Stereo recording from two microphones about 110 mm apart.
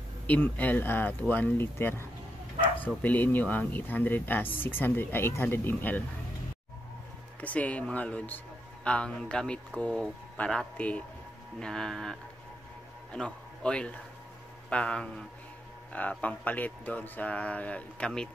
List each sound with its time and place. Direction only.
0.3 s speech: 15° left (ahead or behind)
7.3 s a man's voice: 15° left (ahead or behind)